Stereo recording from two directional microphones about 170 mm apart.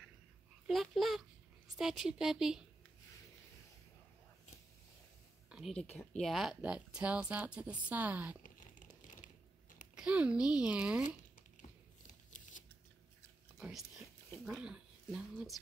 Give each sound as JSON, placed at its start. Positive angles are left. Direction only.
{"t": 0.7, "sound": "speech", "side_deg": 0}
{"t": 5.9, "sound": "speech", "side_deg": 5}
{"t": 8.4, "sound": "a sound", "side_deg": 50}
{"t": 9.9, "sound": "speech", "side_deg": -5}
{"t": 13.6, "sound": "speech", "side_deg": 0}